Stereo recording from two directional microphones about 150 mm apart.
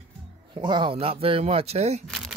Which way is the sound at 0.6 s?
30° right (ahead or behind).